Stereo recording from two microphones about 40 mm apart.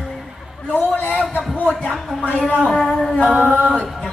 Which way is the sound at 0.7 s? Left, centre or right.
Left.